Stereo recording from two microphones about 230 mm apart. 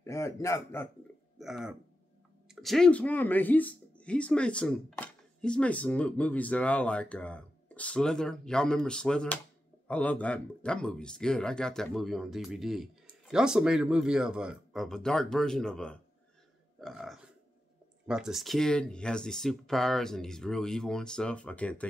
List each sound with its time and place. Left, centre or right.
0.0 s a man's voice: centre
1.4 s speech: centre